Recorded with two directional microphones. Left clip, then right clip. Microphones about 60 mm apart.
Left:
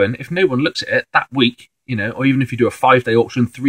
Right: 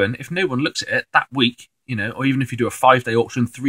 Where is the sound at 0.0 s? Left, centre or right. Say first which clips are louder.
Left 4 dB; right.